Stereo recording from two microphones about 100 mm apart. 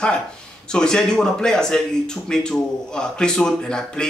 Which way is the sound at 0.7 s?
5° left (ahead or behind).